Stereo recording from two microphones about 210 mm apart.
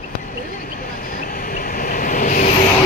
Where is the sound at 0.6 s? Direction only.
45° left (ahead or behind).